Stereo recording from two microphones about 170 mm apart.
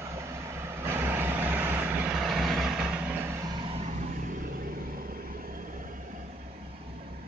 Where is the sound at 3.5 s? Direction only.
35° right (ahead or behind).